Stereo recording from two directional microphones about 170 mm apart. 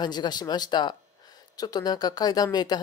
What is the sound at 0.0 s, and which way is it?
Speech, 25° left (ahead or behind).